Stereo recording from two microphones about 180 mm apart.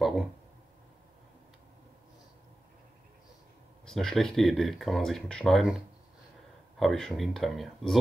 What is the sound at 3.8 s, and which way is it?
Speech, centre (ahead or behind).